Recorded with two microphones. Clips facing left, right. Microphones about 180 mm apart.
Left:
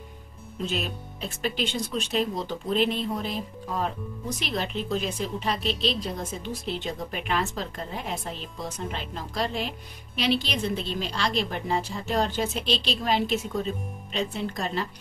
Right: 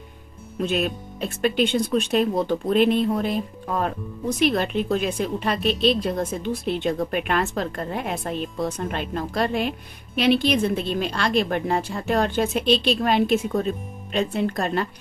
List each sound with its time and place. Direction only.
0.6 s a woman's voice: 60° right (ahead or behind)